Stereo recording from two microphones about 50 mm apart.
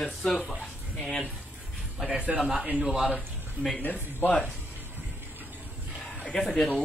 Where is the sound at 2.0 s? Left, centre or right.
Centre.